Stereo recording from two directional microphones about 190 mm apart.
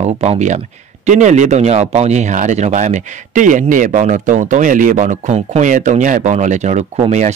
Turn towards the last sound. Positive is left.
turn(degrees=-40)  # may be behind; listen again after turning